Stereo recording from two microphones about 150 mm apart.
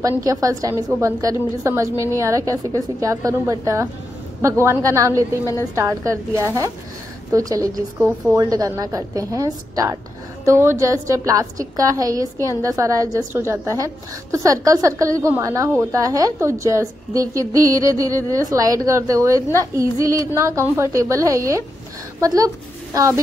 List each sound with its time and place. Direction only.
0.2 s a woman's voice: 25° right (ahead or behind)
5.4 s a woman's voice: 20° left (ahead or behind)
5.8 s a woman's voice: 20° right (ahead or behind)
7.3 s a woman's voice: 20° right (ahead or behind)